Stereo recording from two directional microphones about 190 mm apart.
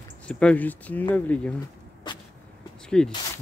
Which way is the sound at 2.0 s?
25° left (ahead or behind).